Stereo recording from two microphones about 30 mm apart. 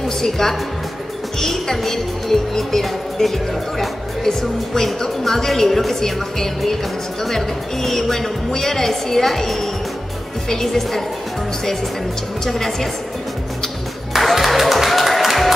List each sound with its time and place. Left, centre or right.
0.2 s speech: centre
4.3 s speech: centre
14.1 s music: centre